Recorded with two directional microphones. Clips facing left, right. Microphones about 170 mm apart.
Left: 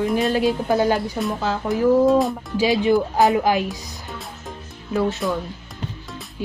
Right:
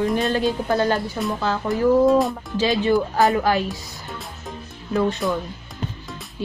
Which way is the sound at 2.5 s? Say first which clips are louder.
Left 1 dB; 15° left (ahead or behind).